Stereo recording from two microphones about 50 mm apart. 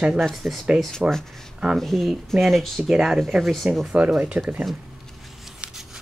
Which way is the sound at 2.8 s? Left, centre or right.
Centre.